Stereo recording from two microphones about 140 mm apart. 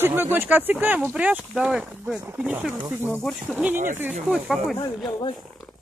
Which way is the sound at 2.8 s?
15° right (ahead or behind).